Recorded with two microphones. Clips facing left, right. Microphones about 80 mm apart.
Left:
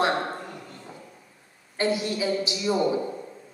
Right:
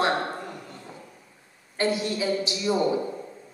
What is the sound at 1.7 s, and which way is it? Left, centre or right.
A woman's voice, left.